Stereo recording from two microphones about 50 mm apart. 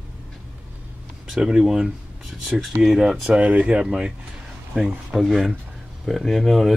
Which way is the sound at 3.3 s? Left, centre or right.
Right.